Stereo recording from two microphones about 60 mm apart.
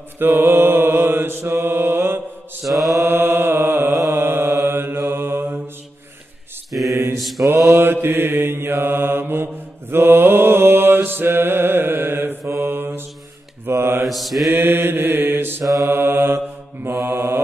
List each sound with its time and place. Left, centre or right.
0.2 s mantra: right
2.7 s mantra: centre
3.1 s chant: right
4.1 s mantra: right
6.7 s mantra: centre
7.8 s mantra: right
14.0 s mantra: centre
14.5 s mantra: right